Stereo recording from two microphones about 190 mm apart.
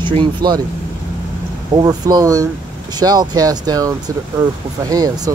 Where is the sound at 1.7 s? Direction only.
20° right (ahead or behind).